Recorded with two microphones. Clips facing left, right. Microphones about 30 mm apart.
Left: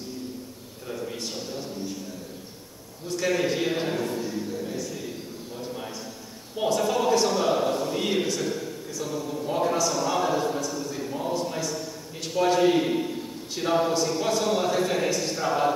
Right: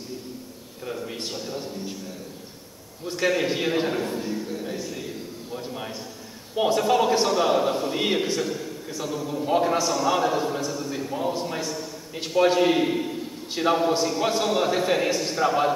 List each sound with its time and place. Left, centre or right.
0.8 s a man's voice: right
3.1 s a man's voice: right